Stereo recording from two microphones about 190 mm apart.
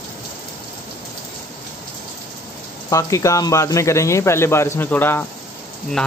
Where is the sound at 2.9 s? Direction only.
15° left (ahead or behind).